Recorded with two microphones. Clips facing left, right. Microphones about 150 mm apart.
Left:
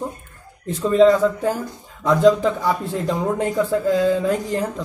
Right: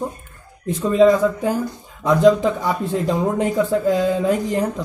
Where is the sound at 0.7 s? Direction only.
15° right (ahead or behind).